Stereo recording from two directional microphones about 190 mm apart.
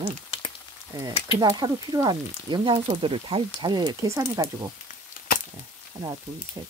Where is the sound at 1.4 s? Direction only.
25° right (ahead or behind).